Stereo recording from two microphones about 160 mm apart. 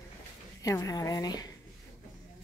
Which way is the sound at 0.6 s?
20° left (ahead or behind).